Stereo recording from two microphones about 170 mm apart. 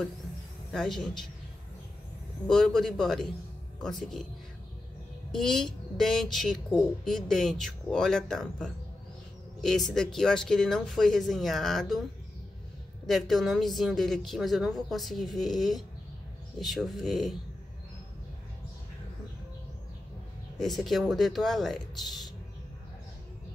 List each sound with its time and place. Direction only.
0.7 s a woman's voice: centre (ahead or behind)
2.4 s a woman's voice: 5° left (ahead or behind)
5.3 s a woman's voice: 5° left (ahead or behind)
13.0 s a woman's voice: centre (ahead or behind)
20.5 s a woman's voice: centre (ahead or behind)